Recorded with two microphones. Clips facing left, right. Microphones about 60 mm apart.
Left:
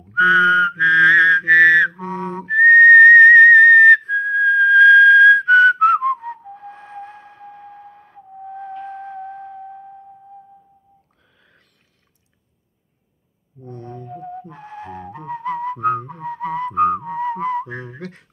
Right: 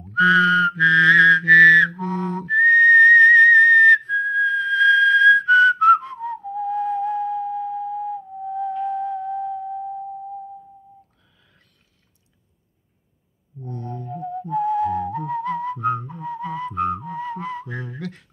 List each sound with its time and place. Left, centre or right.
0.1 s whistling: left
13.7 s music: centre
14.2 s music: left